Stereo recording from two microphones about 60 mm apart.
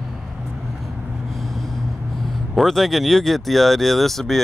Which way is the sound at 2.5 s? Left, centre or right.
Centre.